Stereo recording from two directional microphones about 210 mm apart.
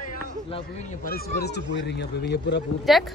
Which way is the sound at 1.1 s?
50° left (ahead or behind).